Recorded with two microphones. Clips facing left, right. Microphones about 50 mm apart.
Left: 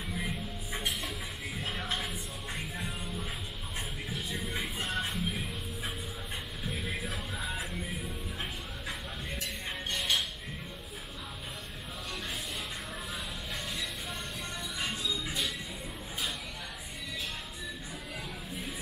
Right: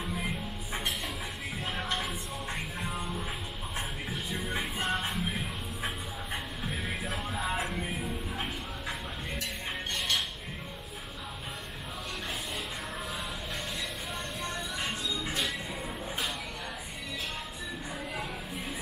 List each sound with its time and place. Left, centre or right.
0.7 s a sound: centre
1.6 s music: centre
4.1 s music: centre
6.6 s music: centre
14.4 s music: centre